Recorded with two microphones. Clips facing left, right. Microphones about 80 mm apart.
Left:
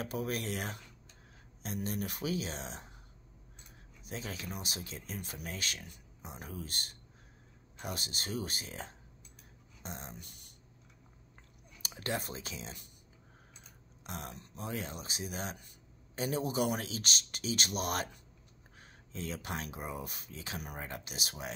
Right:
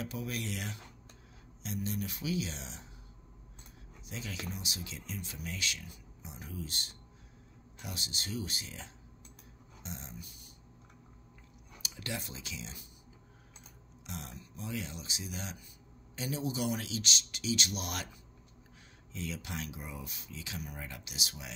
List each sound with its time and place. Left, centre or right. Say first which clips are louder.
0.0 s a man's voice: left 3 dB; left
4.0 s speech: left 1 dB; left
11.8 s speech: left 4 dB; left
14.0 s speech: left 2 dB; left
14.3 s speech: left 1 dB; left
14.7 s a man's voice: left 1 dB; left
19.1 s speech: left 1 dB; left